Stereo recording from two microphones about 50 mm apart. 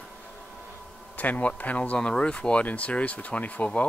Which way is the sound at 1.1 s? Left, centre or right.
Left.